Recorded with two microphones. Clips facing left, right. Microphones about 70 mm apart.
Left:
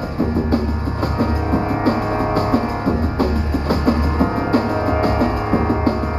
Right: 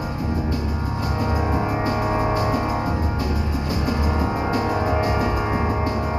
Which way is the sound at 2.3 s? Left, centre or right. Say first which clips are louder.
Left 4 dB; left.